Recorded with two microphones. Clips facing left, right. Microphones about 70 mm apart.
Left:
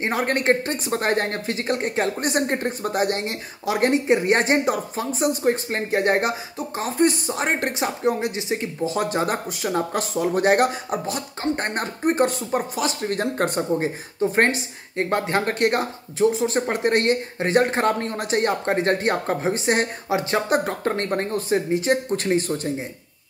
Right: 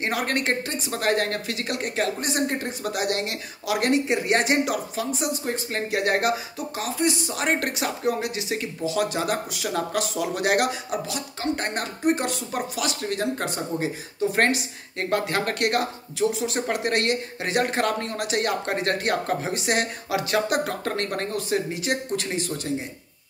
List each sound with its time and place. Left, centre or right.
0.0 s speech: left
2.2 s speech: left
6.8 s speech: left
7.3 s speech: left
14.3 s speech: left